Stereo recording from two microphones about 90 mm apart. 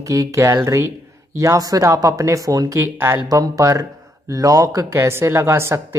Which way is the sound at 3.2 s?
40° right (ahead or behind).